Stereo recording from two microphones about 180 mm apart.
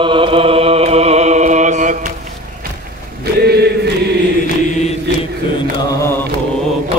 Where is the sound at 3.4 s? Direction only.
65° right (ahead or behind).